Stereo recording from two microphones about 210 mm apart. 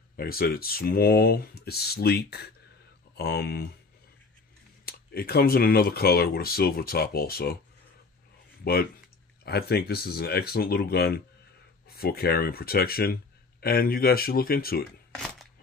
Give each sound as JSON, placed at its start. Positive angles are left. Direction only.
{"t": 0.2, "sound": "speech", "side_deg": 45}
{"t": 4.8, "sound": "speech", "side_deg": 45}
{"t": 8.6, "sound": "speech", "side_deg": 45}